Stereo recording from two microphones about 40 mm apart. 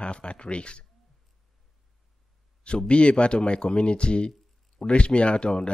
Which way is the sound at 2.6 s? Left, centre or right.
Left.